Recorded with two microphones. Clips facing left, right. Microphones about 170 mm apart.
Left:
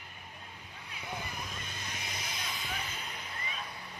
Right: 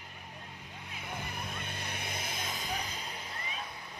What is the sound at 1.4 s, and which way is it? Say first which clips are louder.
Vehicle: right 2 dB; 60° right (ahead or behind).